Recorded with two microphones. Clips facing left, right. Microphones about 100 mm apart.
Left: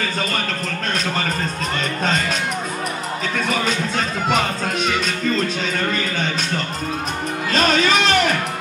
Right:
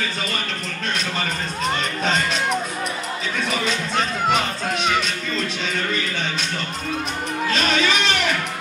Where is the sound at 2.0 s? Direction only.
45° left (ahead or behind).